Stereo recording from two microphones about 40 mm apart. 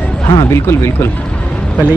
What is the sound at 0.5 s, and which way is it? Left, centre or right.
Speech, left.